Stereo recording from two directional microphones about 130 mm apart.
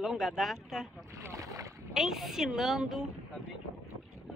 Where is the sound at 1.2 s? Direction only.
25° right (ahead or behind).